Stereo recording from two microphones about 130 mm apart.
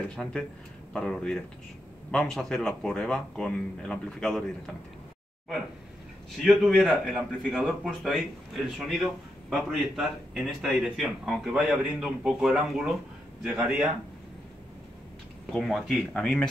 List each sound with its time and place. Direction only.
0.1 s a man's voice: 5° left (ahead or behind)
6.3 s a man's voice: centre (ahead or behind)
15.5 s a man's voice: centre (ahead or behind)